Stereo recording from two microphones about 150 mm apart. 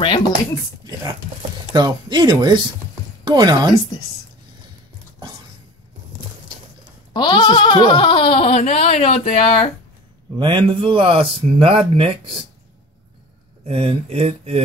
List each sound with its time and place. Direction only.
1.7 s speech: 30° right (ahead or behind)
7.2 s speech: 30° left (ahead or behind)
10.3 s speech: 30° right (ahead or behind)
13.7 s speech: 40° right (ahead or behind)